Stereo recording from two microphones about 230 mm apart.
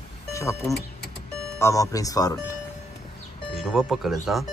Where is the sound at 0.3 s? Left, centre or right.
Centre.